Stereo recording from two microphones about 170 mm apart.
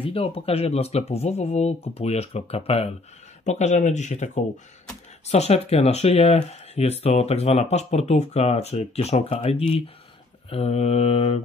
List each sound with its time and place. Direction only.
0.0 s speech: 35° left (ahead or behind)